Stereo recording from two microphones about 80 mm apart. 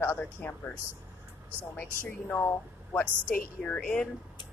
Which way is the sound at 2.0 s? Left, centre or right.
Left.